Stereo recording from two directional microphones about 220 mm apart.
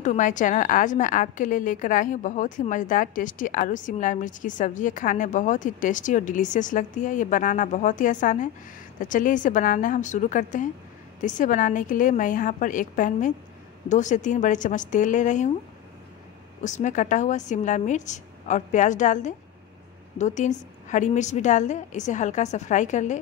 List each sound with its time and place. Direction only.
0.0 s a woman's voice: 35° left (ahead or behind)
16.6 s a woman's voice: 35° left (ahead or behind)